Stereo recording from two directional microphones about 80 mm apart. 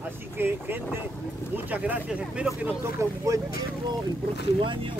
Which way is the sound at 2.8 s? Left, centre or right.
Right.